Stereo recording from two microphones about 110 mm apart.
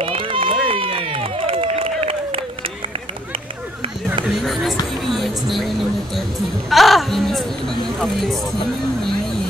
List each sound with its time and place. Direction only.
0.0 s run: 55° right (ahead or behind)
4.3 s a sound: centre (ahead or behind)
5.0 s music: centre (ahead or behind)
6.7 s speech: centre (ahead or behind)